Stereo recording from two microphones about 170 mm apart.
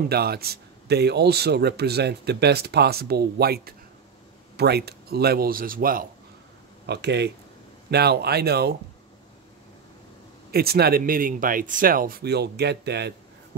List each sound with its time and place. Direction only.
0.1 s speech: 70° right (ahead or behind)
6.9 s speech: 80° right
7.9 s speech: 75° right (ahead or behind)
10.5 s speech: 65° right (ahead or behind)